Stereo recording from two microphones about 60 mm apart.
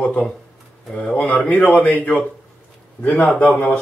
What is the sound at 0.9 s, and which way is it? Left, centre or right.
Speech, centre.